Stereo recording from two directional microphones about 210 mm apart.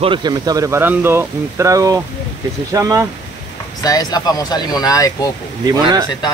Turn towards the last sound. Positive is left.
turn(degrees=-15)  # may be behind; listen again after turning